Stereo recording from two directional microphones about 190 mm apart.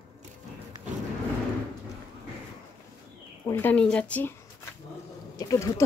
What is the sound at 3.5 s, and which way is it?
Speech, 10° left (ahead or behind).